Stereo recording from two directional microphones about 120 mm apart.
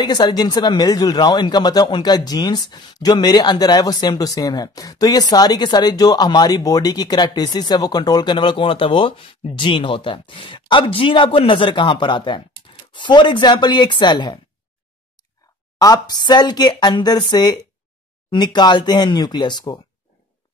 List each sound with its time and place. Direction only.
0.0 s speech: 35° left (ahead or behind)
15.8 s speech: 30° left (ahead or behind)